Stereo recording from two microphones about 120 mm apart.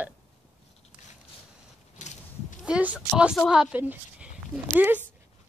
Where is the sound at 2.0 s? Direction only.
80° left.